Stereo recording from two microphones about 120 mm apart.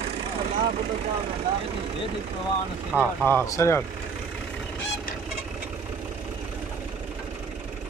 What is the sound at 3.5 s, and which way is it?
Speech, 25° left (ahead or behind).